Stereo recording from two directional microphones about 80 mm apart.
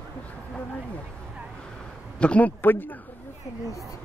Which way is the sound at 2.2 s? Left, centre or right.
Centre.